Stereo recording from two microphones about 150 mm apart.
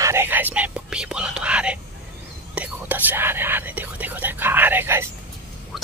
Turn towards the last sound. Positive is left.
turn(degrees=-15)  # may be behind; listen again after turning